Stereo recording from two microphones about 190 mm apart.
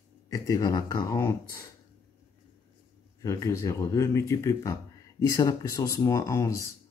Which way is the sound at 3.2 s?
15° left (ahead or behind).